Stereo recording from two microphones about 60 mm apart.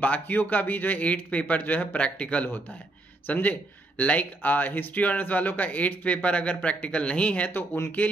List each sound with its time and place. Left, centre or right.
0.0 s speech: left